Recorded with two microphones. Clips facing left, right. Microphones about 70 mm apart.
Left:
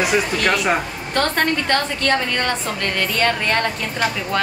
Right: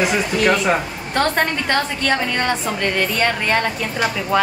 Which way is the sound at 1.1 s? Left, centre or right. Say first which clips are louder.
Right 1 dB; centre.